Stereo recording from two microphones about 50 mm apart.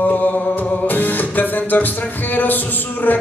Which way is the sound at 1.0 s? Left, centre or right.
Left.